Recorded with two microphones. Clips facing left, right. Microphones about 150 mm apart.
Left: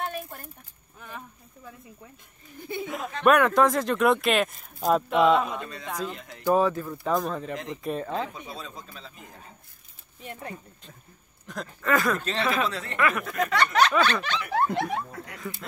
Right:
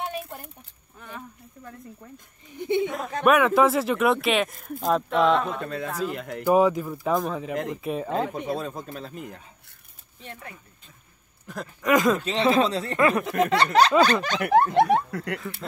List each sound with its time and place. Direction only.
0.9 s a sound: centre (ahead or behind)
2.8 s speech: centre (ahead or behind)
6.1 s speech: 60° right (ahead or behind)
6.4 s speech: 15° right (ahead or behind)
7.0 s speech: 5° right (ahead or behind)
8.4 s speech: 55° right (ahead or behind)
10.2 s speech: 20° left (ahead or behind)
11.4 s speech: 10° right (ahead or behind); by 14.4 s 40° right (ahead or behind)
14.4 s speech: 60° right (ahead or behind)
15.0 s speech: 70° right (ahead or behind)